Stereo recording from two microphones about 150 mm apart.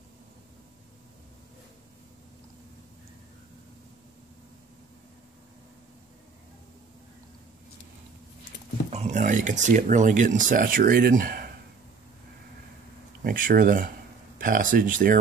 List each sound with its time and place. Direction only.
8.9 s speech: 55° right (ahead or behind); by 11.5 s 75° right (ahead or behind)
13.2 s speech: 70° right (ahead or behind)